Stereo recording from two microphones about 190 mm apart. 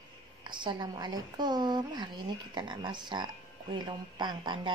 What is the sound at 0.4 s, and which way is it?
Speech, 25° right (ahead or behind).